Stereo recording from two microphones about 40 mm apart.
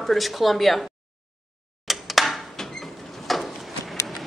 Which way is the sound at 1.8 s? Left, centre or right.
Centre.